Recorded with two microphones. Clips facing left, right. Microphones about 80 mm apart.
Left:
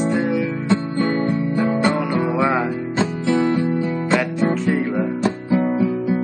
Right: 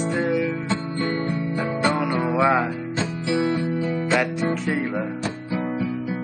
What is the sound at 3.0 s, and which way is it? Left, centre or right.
Music, left.